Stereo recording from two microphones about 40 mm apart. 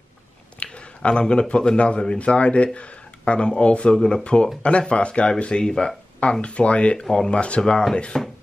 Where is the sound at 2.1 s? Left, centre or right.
Left.